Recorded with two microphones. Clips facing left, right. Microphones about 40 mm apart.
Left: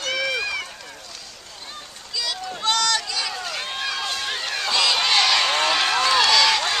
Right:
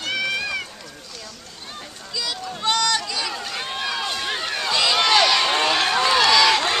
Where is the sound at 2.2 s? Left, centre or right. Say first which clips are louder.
Even; centre.